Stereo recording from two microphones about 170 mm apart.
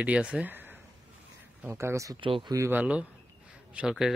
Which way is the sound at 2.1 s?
30° right (ahead or behind).